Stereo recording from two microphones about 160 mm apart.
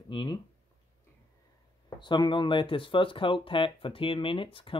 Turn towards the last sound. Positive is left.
turn(degrees=35)  # may be behind; listen again after turning